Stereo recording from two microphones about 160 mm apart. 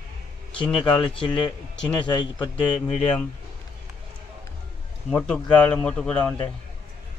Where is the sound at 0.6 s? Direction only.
30° left (ahead or behind).